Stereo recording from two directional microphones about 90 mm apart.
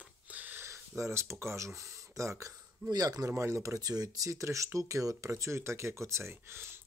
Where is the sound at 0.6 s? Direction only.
35° right (ahead or behind).